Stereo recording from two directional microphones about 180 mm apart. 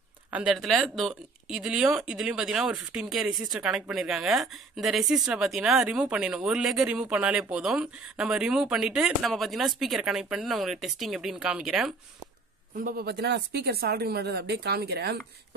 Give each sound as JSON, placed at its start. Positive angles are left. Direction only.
{"t": 0.3, "sound": "speech", "side_deg": -5}
{"t": 12.8, "sound": "speech", "side_deg": -60}